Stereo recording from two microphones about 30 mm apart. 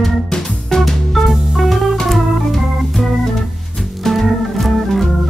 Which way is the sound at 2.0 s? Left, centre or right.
Centre.